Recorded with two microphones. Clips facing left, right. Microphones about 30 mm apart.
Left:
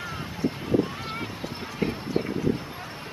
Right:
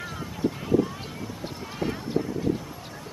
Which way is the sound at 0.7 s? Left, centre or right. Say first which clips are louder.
Right 1 dB; left.